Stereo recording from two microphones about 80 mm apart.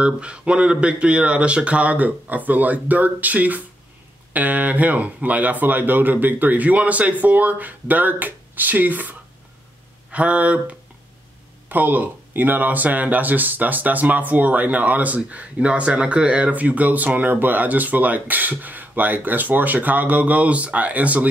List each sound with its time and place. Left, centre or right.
0.0 s speech: centre
10.1 s speech: centre